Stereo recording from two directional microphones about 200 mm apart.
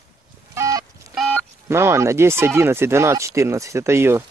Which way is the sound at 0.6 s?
20° right (ahead or behind).